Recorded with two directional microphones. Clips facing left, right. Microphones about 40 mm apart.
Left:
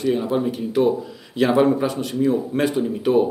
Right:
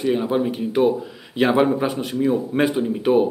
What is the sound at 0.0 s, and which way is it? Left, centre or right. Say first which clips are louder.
Speech: even; centre.